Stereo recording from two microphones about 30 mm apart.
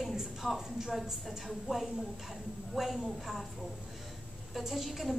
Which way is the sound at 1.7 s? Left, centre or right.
Right.